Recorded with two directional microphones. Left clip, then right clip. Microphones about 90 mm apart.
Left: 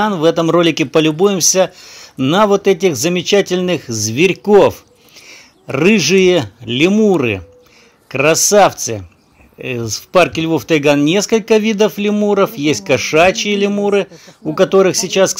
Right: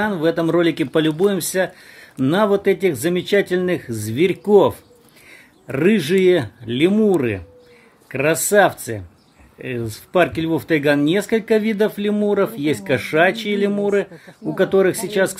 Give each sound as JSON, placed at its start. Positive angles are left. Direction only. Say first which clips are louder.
{"t": 0.0, "sound": "speech", "louder": "left 6 dB", "side_deg": 30}
{"t": 5.7, "sound": "speech", "louder": "left 5 dB", "side_deg": 30}
{"t": 6.9, "sound": "speech", "louder": "left 4 dB", "side_deg": 15}
{"t": 7.2, "sound": "speech", "louder": "left 5 dB", "side_deg": 35}